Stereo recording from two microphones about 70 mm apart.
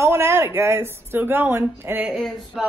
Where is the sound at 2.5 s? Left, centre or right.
Centre.